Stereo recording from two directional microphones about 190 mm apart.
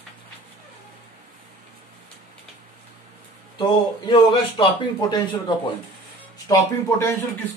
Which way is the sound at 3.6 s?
25° left (ahead or behind).